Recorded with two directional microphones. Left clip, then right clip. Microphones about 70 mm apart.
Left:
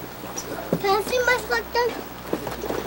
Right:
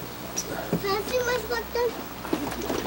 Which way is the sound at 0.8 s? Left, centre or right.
Left.